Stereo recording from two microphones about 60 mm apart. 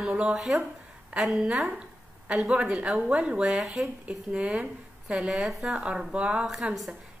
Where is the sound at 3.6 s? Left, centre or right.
Centre.